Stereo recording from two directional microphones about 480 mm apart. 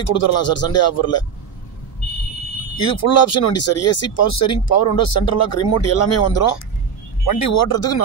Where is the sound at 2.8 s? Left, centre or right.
Left.